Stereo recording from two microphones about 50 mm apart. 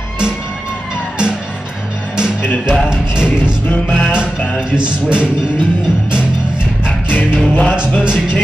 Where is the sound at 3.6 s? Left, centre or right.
Left.